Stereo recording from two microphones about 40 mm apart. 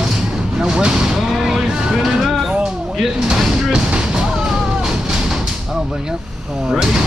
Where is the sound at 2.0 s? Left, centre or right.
Centre.